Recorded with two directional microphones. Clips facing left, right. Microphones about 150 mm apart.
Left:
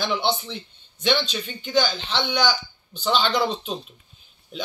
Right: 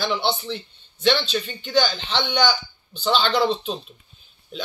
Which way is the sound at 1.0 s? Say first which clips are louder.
Right 2 dB; 10° left (ahead or behind).